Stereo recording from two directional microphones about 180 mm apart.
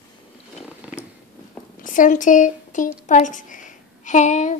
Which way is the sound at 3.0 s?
45° left (ahead or behind).